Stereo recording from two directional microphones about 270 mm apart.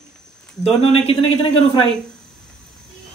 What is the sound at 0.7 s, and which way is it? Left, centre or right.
A man's voice, left.